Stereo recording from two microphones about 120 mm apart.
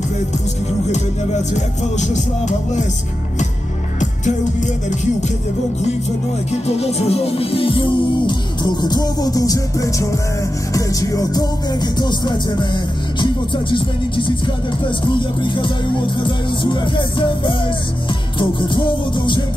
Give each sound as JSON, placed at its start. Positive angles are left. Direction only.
{"t": 1.5, "sound": "music", "side_deg": 75}
{"t": 6.5, "sound": "music", "side_deg": 65}